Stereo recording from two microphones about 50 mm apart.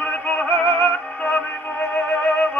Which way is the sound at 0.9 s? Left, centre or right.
Left.